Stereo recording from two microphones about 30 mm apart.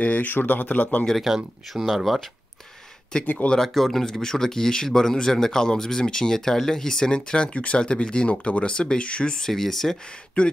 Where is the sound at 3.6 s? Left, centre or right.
Centre.